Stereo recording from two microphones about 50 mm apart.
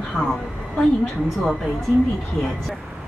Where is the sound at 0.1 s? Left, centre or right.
Centre.